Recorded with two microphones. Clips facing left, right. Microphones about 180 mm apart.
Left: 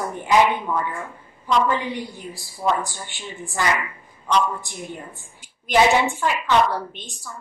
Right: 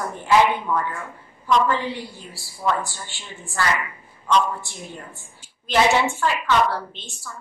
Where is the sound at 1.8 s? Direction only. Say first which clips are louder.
Left 1 dB; 15° left (ahead or behind).